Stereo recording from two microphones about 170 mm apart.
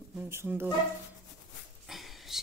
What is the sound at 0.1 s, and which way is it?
Speech, 10° right (ahead or behind).